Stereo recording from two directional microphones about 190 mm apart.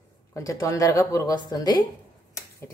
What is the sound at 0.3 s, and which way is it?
Speech, 15° left (ahead or behind).